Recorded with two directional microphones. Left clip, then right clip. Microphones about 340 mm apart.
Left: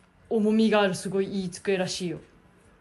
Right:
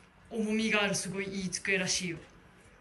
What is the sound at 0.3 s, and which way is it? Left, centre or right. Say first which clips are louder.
Speech: left 8 dB; centre.